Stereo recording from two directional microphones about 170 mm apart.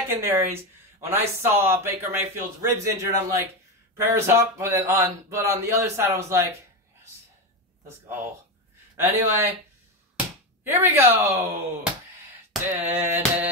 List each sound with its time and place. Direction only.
0.1 s speech: 10° right (ahead or behind)
9.0 s speech: 15° right (ahead or behind)